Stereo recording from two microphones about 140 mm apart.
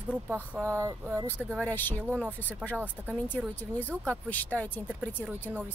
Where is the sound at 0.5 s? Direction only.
20° right (ahead or behind).